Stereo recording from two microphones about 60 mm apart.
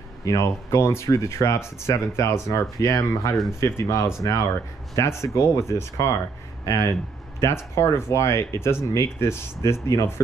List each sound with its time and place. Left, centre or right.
0.2 s speech: left
3.5 s speech: left